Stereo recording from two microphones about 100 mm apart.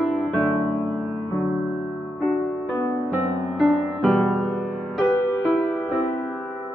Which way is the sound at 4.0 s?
5° left (ahead or behind).